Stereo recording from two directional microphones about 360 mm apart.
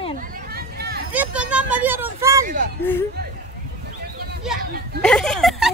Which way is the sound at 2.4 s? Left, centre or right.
Right.